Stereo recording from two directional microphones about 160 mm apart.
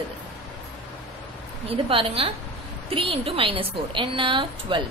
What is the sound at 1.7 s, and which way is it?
A woman's voice, 35° right (ahead or behind).